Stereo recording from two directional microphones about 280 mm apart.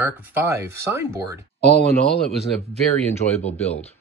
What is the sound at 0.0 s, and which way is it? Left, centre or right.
Speech, centre.